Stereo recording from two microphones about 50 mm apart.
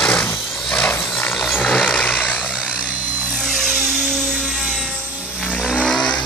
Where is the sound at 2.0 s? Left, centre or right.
Left.